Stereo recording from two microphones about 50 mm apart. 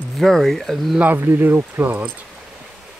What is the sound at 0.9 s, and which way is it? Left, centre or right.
Speech, right.